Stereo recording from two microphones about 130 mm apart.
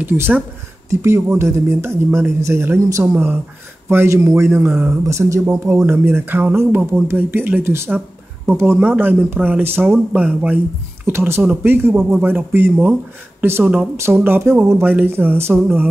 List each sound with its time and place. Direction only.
0.0 s speech: 15° right (ahead or behind)